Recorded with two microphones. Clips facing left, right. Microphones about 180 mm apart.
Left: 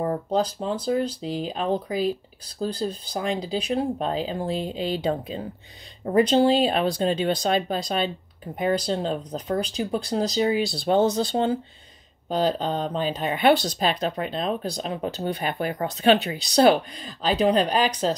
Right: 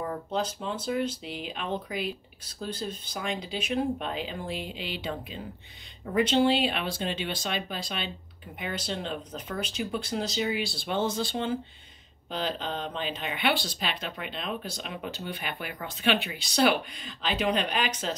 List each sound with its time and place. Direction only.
0.0 s speech: 40° left (ahead or behind)